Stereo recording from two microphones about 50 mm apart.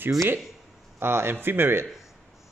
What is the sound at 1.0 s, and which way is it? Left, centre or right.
Speech, right.